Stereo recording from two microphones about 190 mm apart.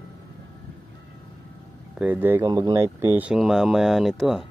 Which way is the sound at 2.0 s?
10° right (ahead or behind).